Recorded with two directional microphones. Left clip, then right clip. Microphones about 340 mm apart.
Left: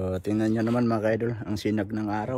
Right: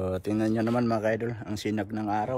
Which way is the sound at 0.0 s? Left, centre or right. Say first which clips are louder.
Left 1 dB; centre.